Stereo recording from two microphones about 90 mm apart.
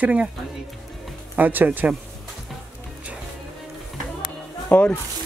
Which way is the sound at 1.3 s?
20° right (ahead or behind).